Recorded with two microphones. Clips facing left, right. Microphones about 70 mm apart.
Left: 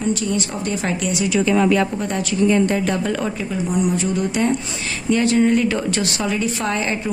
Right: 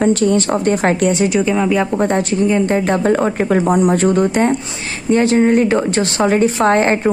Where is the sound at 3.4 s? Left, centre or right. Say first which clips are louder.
Right 8 dB; right.